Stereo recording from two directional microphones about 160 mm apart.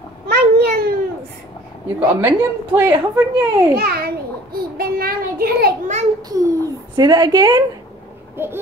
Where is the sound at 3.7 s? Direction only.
75° right (ahead or behind).